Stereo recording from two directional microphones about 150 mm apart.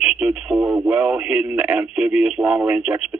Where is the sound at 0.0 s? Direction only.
5° right (ahead or behind).